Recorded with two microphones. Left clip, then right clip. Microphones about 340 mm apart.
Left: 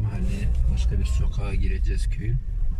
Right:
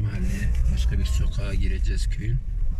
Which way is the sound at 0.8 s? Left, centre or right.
Left.